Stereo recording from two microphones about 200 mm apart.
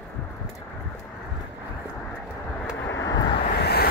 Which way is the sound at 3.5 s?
55° left (ahead or behind).